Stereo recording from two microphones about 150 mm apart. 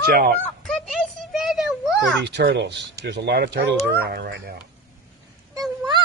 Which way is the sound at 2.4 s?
90° right.